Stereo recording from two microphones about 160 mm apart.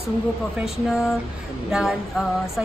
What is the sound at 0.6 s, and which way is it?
Speech, centre (ahead or behind).